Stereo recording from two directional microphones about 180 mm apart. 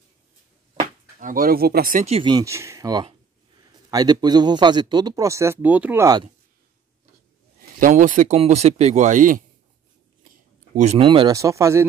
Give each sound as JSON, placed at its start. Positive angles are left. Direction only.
{"t": 0.7, "sound": "speech", "side_deg": -50}
{"t": 2.0, "sound": "speech", "side_deg": -30}
{"t": 7.8, "sound": "speech", "side_deg": -45}
{"t": 10.7, "sound": "speech", "side_deg": -40}
{"t": 11.0, "sound": "speech", "side_deg": -25}